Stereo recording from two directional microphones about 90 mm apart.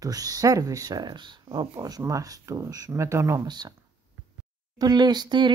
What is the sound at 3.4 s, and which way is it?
Speech, 50° right (ahead or behind).